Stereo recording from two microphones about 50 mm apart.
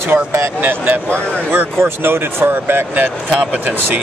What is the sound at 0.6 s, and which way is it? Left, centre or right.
Speech, right.